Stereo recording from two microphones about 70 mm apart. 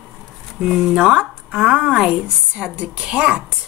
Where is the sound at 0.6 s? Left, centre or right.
Centre.